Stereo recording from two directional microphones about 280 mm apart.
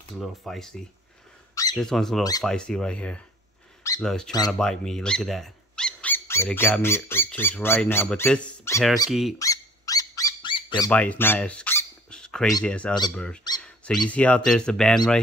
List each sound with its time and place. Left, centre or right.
0.2 s speech: centre
1.5 s squeak: centre
1.8 s speech: centre
9.4 s a sound: centre
10.9 s squeak: centre
12.5 s speech: centre